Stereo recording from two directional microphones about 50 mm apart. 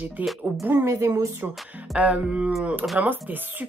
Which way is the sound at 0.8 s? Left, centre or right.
Right.